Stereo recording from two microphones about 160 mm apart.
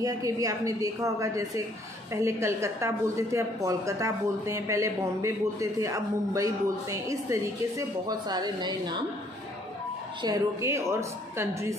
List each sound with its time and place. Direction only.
0.0 s a woman's voice: 20° right (ahead or behind)
10.2 s a woman's voice: 20° right (ahead or behind)